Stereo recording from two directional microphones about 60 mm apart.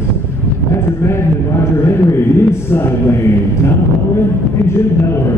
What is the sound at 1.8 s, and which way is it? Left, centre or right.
Speech, left.